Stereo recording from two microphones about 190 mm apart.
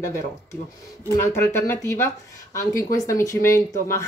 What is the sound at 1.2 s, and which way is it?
Speech, 15° left (ahead or behind).